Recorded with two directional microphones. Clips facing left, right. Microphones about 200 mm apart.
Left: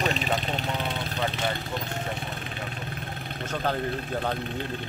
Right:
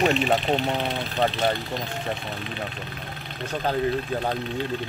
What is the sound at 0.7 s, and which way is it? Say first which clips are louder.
Speech: right 4 dB; 60° right (ahead or behind).